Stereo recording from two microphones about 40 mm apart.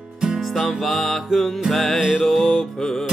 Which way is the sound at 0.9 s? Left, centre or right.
Centre.